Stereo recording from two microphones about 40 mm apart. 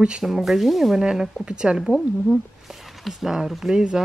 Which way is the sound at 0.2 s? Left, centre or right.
Centre.